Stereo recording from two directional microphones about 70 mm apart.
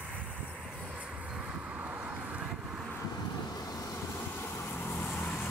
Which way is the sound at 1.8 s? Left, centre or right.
Right.